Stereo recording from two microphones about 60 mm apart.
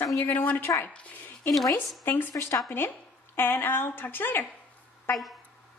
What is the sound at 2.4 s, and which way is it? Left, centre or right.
Speech, left.